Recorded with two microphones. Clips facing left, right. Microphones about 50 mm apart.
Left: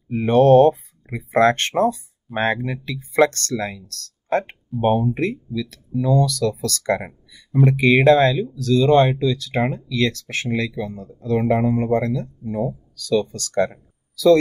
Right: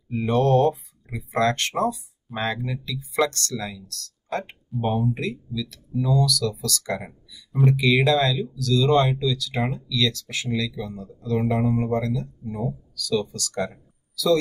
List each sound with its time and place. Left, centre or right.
0.1 s speech: left